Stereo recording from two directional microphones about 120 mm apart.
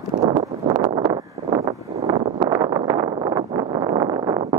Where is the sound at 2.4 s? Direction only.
35° right (ahead or behind).